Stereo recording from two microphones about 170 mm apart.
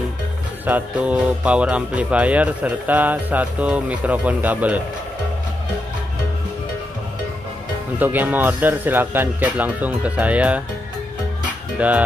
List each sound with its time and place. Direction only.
0.7 s speech: 10° right (ahead or behind)
8.0 s speech: 10° right (ahead or behind)
11.8 s speech: 10° right (ahead or behind)